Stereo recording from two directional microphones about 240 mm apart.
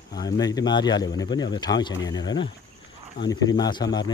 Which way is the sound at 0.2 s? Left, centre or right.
Centre.